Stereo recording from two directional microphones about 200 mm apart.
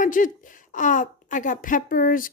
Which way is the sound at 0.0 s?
40° left (ahead or behind).